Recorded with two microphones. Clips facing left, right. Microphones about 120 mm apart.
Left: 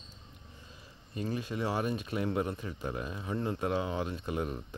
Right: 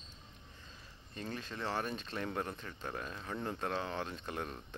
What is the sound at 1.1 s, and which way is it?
Speech, 10° left (ahead or behind).